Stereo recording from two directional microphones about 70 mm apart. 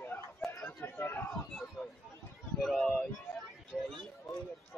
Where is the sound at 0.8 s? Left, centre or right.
Left.